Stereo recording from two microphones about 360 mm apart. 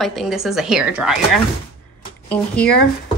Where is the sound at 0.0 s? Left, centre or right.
Centre.